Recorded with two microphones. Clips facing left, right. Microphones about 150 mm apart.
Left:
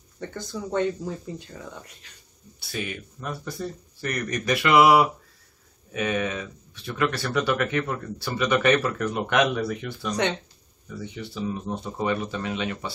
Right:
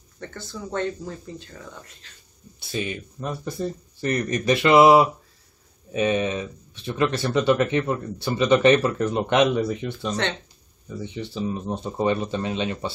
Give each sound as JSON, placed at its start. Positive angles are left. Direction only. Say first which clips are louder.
{"t": 0.2, "sound": "speech", "louder": "left 2 dB", "side_deg": 15}
{"t": 2.7, "sound": "speech", "louder": "right 4 dB", "side_deg": -20}